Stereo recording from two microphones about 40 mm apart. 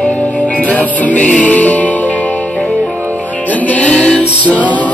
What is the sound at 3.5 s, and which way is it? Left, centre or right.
Music, left.